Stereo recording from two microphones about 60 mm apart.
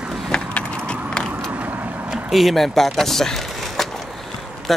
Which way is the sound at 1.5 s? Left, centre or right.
Right.